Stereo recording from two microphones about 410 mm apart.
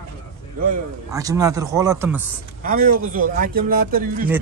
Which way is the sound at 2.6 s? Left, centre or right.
Centre.